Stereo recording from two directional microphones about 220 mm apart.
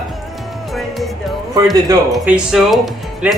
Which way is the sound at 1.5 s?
15° right (ahead or behind).